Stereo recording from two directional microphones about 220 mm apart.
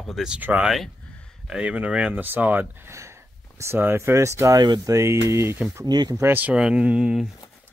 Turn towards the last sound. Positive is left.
turn(degrees=0)  # may be behind; listen again after turning